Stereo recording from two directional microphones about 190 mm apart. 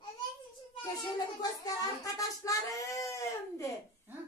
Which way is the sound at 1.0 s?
20° left (ahead or behind).